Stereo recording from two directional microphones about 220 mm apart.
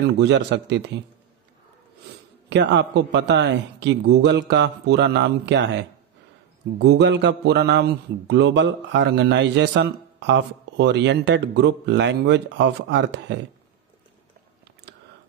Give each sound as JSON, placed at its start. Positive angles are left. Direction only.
{"t": 0.0, "sound": "a man's voice", "side_deg": -50}
{"t": 2.5, "sound": "a man's voice", "side_deg": -55}
{"t": 14.9, "sound": "whispering", "side_deg": -50}